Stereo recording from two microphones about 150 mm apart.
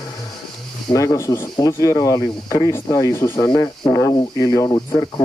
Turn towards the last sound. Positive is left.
turn(degrees=25)  # may be behind; listen again after turning